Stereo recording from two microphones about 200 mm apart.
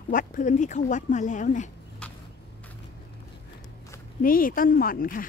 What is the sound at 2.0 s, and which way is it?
Vehicle, 5° left (ahead or behind).